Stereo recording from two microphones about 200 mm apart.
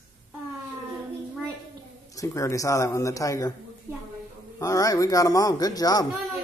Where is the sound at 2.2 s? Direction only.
15° left (ahead or behind).